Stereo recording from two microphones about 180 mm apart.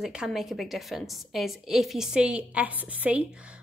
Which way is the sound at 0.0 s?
5° right (ahead or behind).